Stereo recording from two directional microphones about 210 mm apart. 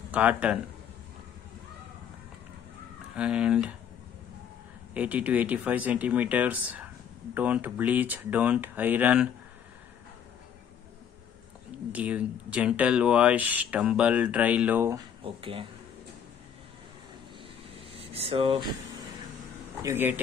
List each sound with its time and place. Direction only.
0.1 s speech: 5° right (ahead or behind)
3.2 s speech: 5° right (ahead or behind)
4.9 s speech: 5° right (ahead or behind)
11.9 s speech: 5° right (ahead or behind)
15.2 s speech: 25° right (ahead or behind)
17.9 s speech: 25° right (ahead or behind)
19.8 s speech: 10° right (ahead or behind)